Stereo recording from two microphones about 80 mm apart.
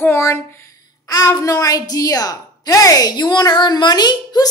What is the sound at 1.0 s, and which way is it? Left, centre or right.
A woman's voice, left.